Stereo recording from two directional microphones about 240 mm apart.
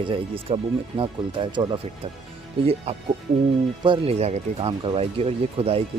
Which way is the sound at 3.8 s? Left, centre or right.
Right.